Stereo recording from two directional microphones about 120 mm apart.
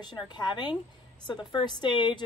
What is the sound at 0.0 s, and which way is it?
A woman's voice, 40° left (ahead or behind).